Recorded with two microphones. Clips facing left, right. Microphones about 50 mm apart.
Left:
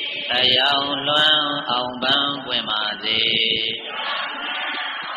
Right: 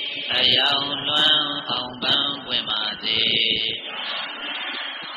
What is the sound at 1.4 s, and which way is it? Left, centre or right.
Mantra, left.